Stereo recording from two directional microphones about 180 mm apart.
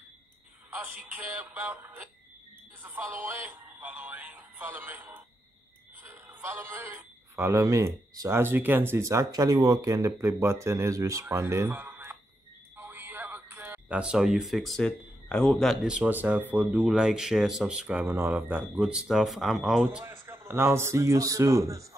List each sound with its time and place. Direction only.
0.7 s speech: 10° right (ahead or behind)